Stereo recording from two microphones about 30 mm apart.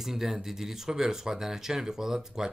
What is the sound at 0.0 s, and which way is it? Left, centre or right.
Speech, centre.